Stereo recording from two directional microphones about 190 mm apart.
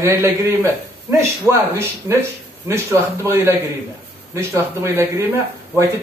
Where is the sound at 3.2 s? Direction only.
15° right (ahead or behind).